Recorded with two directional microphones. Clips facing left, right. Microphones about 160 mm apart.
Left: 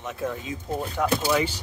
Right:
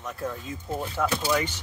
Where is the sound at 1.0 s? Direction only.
10° left (ahead or behind).